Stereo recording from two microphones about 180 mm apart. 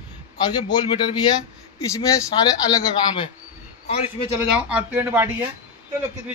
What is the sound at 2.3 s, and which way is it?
Speech, 25° left (ahead or behind).